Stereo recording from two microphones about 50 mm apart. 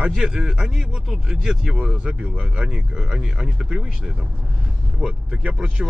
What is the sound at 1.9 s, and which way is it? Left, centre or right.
Speech, right.